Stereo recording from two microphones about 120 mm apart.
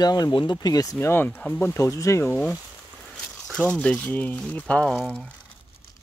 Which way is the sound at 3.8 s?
10° left (ahead or behind).